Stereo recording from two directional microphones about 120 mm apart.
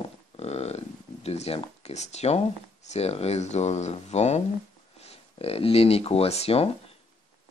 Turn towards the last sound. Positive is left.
turn(degrees=55)  # may be behind; listen again after turning